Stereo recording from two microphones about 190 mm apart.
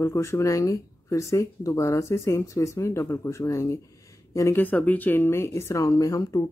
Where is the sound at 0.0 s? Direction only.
15° left (ahead or behind).